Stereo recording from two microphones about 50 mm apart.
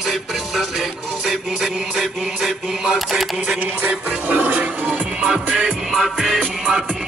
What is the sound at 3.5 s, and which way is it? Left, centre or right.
Music, right.